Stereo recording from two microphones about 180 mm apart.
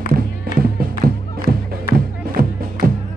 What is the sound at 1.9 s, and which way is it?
Music, 55° right (ahead or behind).